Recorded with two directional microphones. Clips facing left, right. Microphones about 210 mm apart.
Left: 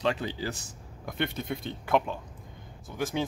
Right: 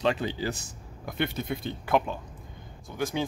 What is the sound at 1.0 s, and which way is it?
Speech, 5° right (ahead or behind).